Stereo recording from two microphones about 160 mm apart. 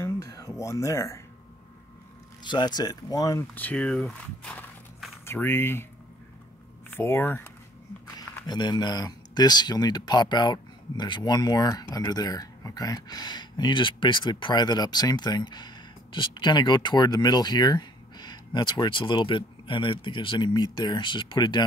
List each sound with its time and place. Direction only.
0.0 s a sound: 20° left (ahead or behind)
2.4 s speech: 30° left (ahead or behind)
6.9 s speech: 15° left (ahead or behind)
8.5 s speech: 25° left (ahead or behind)